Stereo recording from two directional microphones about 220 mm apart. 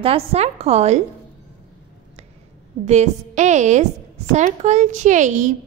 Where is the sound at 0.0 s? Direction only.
25° right (ahead or behind).